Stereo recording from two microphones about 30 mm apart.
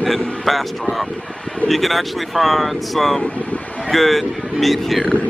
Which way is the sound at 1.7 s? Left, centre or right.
Centre.